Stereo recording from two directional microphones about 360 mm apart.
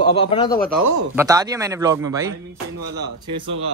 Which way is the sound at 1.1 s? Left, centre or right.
Centre.